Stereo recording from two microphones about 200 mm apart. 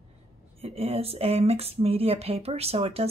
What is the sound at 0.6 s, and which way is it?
Speech, 30° right (ahead or behind).